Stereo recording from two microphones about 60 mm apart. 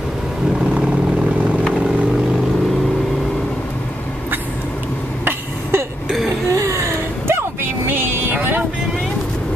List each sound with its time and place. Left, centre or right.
5.2 s cough: right
6.5 s vehicle: right